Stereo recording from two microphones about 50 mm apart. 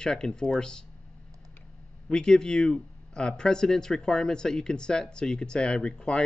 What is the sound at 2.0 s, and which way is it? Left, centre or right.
Speech, centre.